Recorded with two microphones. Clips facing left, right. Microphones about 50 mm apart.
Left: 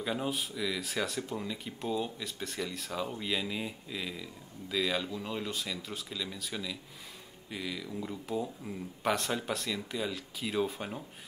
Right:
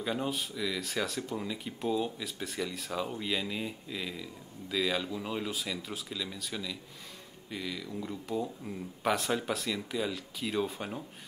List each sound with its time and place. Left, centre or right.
0.0 s speech: centre